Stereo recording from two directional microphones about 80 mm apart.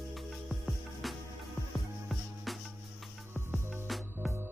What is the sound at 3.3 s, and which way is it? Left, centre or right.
Music, right.